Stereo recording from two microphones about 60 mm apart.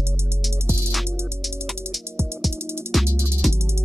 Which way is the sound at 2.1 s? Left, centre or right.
Centre.